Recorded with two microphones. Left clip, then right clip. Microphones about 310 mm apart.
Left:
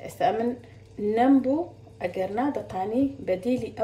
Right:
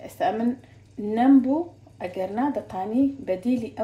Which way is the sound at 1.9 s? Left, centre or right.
Centre.